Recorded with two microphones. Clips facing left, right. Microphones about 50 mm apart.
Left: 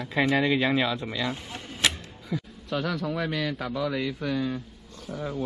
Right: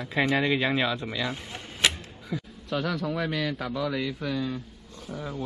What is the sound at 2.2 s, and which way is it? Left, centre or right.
Speech, centre.